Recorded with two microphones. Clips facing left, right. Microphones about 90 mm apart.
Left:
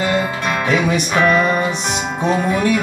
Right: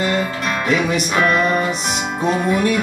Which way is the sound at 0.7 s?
Centre (ahead or behind).